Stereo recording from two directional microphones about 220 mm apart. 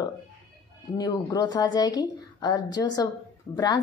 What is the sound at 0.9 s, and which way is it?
A woman's voice, 20° left (ahead or behind).